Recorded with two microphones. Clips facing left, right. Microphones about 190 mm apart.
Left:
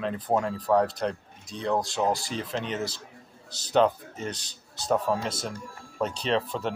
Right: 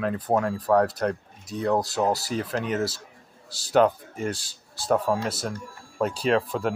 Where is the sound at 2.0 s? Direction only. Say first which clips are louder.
Right 2 dB; 5° right (ahead or behind).